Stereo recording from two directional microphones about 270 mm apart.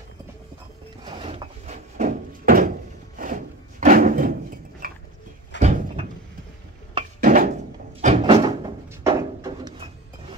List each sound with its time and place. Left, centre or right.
1.0 s drawer open or close: centre
5.6 s door: right
7.2 s a sound: right
8.0 s door: right
8.5 s drawer open or close: centre